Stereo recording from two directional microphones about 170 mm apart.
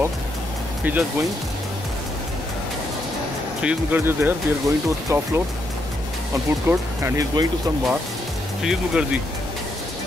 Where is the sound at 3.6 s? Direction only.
10° right (ahead or behind).